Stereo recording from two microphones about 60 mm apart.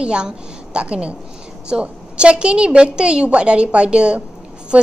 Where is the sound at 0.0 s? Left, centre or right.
Centre.